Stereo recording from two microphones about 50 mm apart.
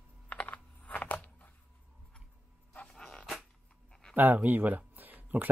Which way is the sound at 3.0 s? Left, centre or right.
Centre.